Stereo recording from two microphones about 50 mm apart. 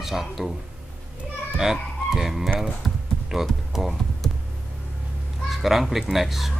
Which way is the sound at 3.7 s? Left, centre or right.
Centre.